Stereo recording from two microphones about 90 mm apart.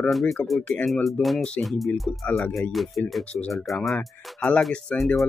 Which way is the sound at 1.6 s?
Centre (ahead or behind).